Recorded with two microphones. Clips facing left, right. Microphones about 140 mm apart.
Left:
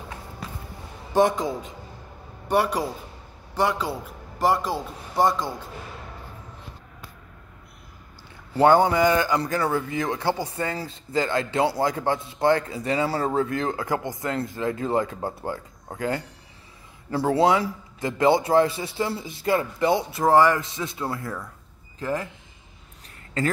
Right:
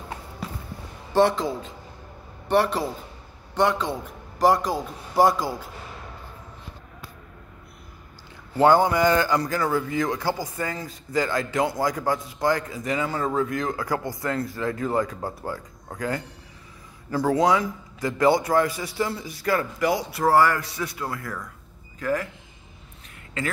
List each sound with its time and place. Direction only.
2.4 s a man's voice: 10° left (ahead or behind)
8.5 s a man's voice: 20° left (ahead or behind)